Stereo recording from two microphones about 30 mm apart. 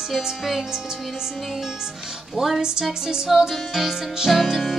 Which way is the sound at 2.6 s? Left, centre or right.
Right.